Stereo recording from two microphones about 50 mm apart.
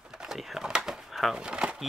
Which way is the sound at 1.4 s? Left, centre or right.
Centre.